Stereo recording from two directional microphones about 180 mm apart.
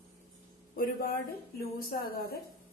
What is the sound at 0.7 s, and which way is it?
Speech, 55° left (ahead or behind).